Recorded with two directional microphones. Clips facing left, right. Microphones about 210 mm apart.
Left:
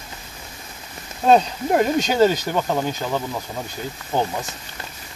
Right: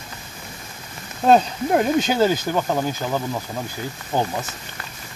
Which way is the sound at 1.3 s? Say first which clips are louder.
Even; centre (ahead or behind).